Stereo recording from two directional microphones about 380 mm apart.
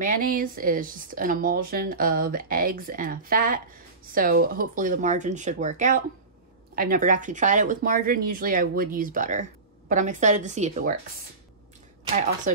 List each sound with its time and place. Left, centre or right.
0.0 s speech: right